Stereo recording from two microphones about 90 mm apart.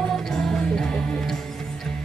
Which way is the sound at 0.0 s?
5° left (ahead or behind).